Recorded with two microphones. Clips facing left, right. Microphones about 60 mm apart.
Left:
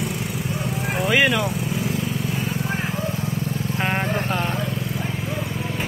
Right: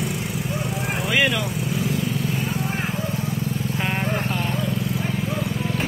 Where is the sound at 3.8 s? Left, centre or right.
Left.